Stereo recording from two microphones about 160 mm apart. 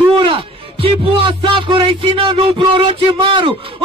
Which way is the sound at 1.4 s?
30° right (ahead or behind).